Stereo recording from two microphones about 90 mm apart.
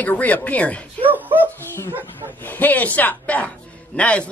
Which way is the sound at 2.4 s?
20° left (ahead or behind).